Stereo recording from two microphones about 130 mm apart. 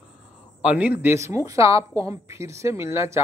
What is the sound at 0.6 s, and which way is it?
Speech, 10° right (ahead or behind).